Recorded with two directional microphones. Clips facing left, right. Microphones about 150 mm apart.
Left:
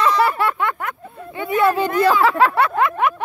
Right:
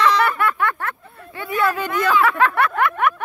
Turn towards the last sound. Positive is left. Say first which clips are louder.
# left 1 dB
turn(degrees=25)  # may be behind; listen again after turning